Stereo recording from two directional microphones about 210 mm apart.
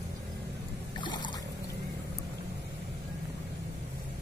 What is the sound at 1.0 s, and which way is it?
Boat, 20° left (ahead or behind).